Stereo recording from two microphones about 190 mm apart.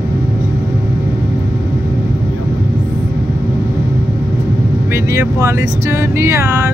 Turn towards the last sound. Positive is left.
turn(degrees=-15)  # may be behind; listen again after turning